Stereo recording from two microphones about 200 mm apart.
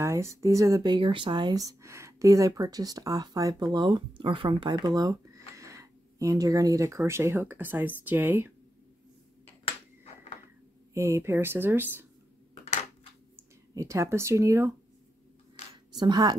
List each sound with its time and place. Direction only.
0.0 s speech: 15° right (ahead or behind)
10.9 s speech: 15° right (ahead or behind)
12.6 s a sound: 35° left (ahead or behind)
13.7 s speech: 15° right (ahead or behind)
15.9 s speech: 20° right (ahead or behind)